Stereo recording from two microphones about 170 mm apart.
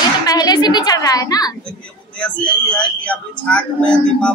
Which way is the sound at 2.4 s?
5° left (ahead or behind).